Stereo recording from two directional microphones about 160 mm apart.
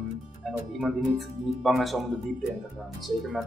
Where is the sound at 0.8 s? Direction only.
Centre (ahead or behind).